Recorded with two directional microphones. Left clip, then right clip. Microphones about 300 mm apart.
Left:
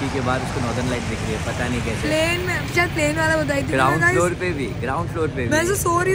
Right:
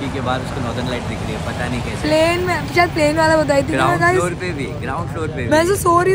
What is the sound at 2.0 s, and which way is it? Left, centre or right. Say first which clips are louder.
Speech: right 6 dB; centre.